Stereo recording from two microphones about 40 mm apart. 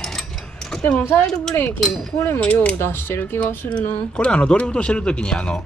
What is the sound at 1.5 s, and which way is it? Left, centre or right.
Speech, left.